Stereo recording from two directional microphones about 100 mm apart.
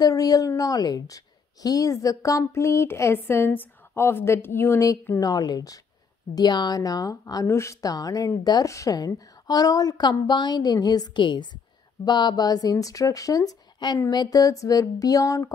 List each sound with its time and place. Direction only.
0.0 s a woman's voice: 40° left (ahead or behind)
5.2 s a woman's voice: 40° left (ahead or behind)
7.4 s a woman's voice: 30° left (ahead or behind)